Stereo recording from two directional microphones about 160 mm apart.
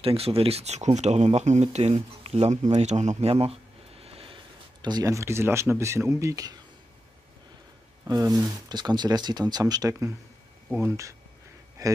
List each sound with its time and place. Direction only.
0.0 s speech: 35° right (ahead or behind)
4.0 s vehicle: 35° right (ahead or behind)
4.8 s speech: 25° right (ahead or behind)
8.1 s a man's voice: 20° right (ahead or behind)